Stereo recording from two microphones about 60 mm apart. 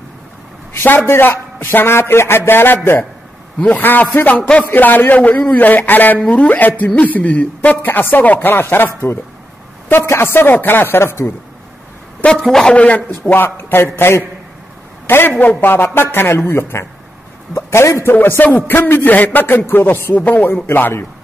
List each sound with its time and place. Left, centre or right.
0.7 s a man's voice: left
12.3 s a man's voice: centre
12.7 s a man's voice: left
13.3 s a man's voice: left
18.7 s a man's voice: left